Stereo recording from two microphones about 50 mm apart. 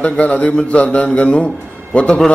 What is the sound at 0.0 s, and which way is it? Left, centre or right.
A man's voice, left.